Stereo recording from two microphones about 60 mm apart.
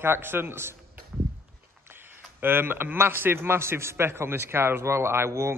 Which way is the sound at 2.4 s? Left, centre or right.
Right.